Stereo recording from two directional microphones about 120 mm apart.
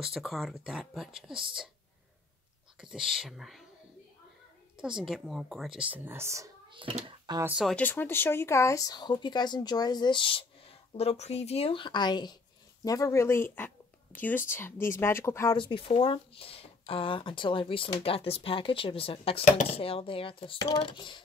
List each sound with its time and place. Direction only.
0.0 s speech: 5° right (ahead or behind)
2.8 s speech: 5° right (ahead or behind)
4.7 s speech: 5° right (ahead or behind); by 6.5 s 25° right (ahead or behind)
6.7 s a child's voice: 45° right (ahead or behind)
7.6 s speech: 10° left (ahead or behind)
15.5 s speech: 45° left (ahead or behind)